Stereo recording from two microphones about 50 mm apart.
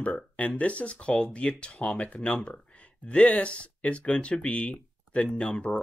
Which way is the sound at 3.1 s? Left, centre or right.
Left.